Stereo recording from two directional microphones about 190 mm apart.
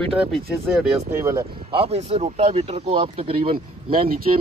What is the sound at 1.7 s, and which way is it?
Speech, 30° right (ahead or behind).